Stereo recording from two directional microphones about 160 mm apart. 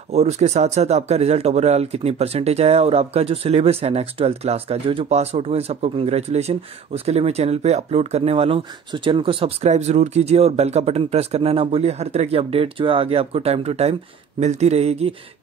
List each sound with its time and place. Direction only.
0.1 s speech: 45° right (ahead or behind)